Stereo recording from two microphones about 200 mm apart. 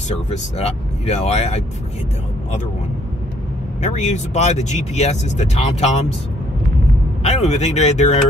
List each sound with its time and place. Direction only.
0.6 s speech: 30° left (ahead or behind)
3.8 s speech: 35° left (ahead or behind)
7.2 s speech: 35° left (ahead or behind)